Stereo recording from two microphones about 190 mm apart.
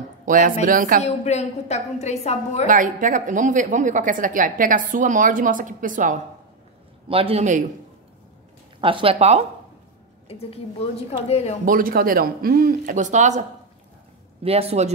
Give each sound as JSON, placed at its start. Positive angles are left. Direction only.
{"t": 0.2, "sound": "speech", "side_deg": -45}
{"t": 1.0, "sound": "a woman's voice", "side_deg": 35}
{"t": 2.6, "sound": "speech", "side_deg": -45}
{"t": 7.1, "sound": "a man's voice", "side_deg": -30}
{"t": 8.8, "sound": "a man's voice", "side_deg": -30}
{"t": 10.2, "sound": "a woman's voice", "side_deg": 30}
{"t": 11.6, "sound": "speech", "side_deg": -45}
{"t": 14.4, "sound": "a man's voice", "side_deg": -30}